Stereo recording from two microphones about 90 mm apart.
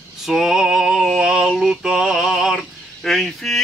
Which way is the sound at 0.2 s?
5° right (ahead or behind).